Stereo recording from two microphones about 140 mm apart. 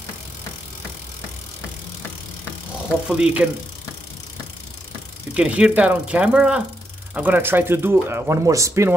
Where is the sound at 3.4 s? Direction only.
10° right (ahead or behind).